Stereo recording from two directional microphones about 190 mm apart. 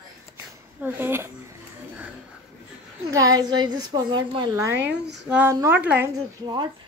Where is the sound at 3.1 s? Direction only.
20° right (ahead or behind).